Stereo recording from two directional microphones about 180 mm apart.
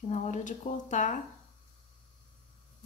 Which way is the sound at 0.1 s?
45° left (ahead or behind).